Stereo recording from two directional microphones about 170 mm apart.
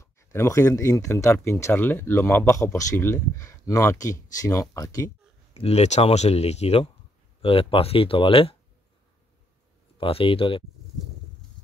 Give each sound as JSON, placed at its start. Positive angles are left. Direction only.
{"t": 0.0, "sound": "speech", "side_deg": 15}
{"t": 5.5, "sound": "speech", "side_deg": 40}
{"t": 9.9, "sound": "speech", "side_deg": 30}